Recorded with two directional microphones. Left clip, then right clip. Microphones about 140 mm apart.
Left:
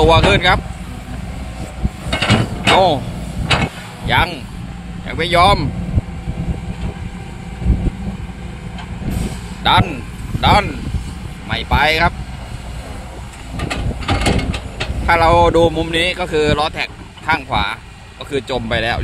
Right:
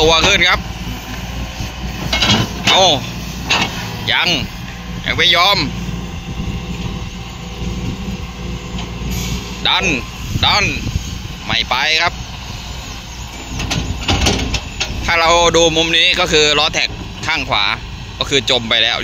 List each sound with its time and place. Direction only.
0.0 s speech: 15° left (ahead or behind)
2.1 s mechanisms: centre (ahead or behind)
2.7 s speech: 15° left (ahead or behind)
4.0 s speech: 15° left (ahead or behind)
9.6 s speech: 15° left (ahead or behind)
14.0 s a sound: 5° right (ahead or behind)
15.0 s speech: 10° left (ahead or behind)